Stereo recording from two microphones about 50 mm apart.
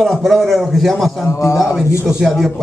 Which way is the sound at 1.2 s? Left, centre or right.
Left.